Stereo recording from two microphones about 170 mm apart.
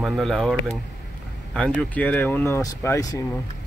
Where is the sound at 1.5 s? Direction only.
5° left (ahead or behind).